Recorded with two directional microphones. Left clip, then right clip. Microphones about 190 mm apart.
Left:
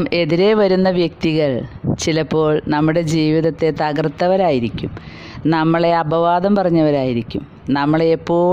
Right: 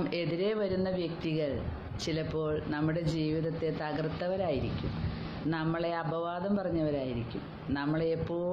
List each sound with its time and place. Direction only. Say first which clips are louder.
0.0 s speech: left 17 dB; 60° left (ahead or behind)